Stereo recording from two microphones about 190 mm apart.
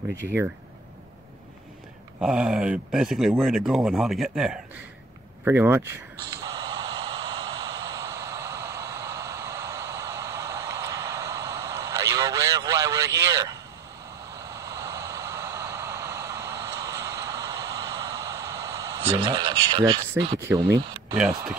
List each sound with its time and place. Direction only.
2.1 s speech: 5° right (ahead or behind)
6.3 s a sound: 20° right (ahead or behind)
14.3 s vehicle: 20° right (ahead or behind)
20.4 s speech: 15° right (ahead or behind)